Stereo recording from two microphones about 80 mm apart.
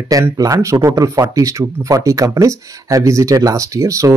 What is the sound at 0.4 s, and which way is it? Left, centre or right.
Speech, right.